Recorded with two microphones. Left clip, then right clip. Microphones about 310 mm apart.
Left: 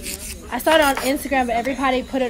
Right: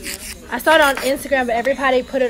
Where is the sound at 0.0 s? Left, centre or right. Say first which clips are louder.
Right 3 dB; centre.